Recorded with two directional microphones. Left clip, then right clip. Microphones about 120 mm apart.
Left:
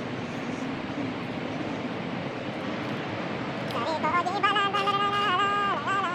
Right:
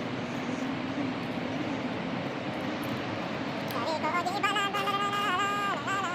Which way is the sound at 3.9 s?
15° left (ahead or behind).